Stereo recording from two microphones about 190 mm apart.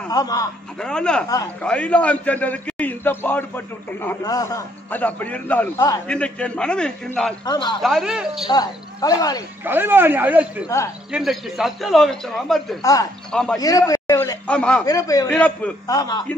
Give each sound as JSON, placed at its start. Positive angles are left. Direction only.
{"t": 0.1, "sound": "speech", "side_deg": 20}
{"t": 0.7, "sound": "a man's voice", "side_deg": 5}
{"t": 7.4, "sound": "speech", "side_deg": 25}
{"t": 7.8, "sound": "speech", "side_deg": 0}
{"t": 8.5, "sound": "speech", "side_deg": 20}
{"t": 9.7, "sound": "speech", "side_deg": -10}
{"t": 10.7, "sound": "a man's voice", "side_deg": 15}
{"t": 11.1, "sound": "speech", "side_deg": 0}
{"t": 13.6, "sound": "a man's voice", "side_deg": 20}
{"t": 14.5, "sound": "speech", "side_deg": 5}
{"t": 14.9, "sound": "speech", "side_deg": 20}
{"t": 15.3, "sound": "a man's voice", "side_deg": 5}
{"t": 15.9, "sound": "speech", "side_deg": 20}